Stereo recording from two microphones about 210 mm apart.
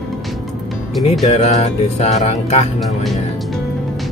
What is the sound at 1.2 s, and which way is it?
Speech, 30° left (ahead or behind).